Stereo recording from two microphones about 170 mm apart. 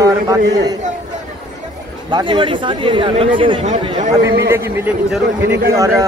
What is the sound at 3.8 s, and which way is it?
Speech, 40° right (ahead or behind).